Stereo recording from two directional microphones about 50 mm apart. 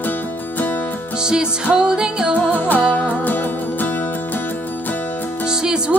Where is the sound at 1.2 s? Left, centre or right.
Centre.